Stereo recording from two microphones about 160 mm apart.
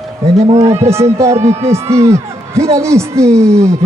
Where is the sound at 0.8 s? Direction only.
15° right (ahead or behind).